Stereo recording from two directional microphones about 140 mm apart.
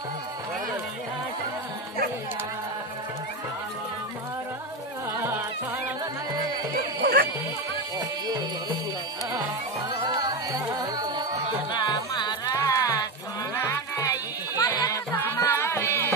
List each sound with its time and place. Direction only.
6.7 s music: 90° right
9.3 s music: 25° right (ahead or behind)
11.7 s music: 30° left (ahead or behind)